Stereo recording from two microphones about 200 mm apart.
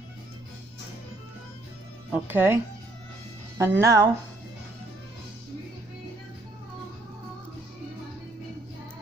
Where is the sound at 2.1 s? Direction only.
10° right (ahead or behind).